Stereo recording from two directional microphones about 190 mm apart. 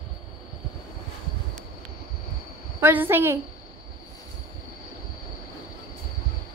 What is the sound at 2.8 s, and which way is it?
Speech, 10° right (ahead or behind).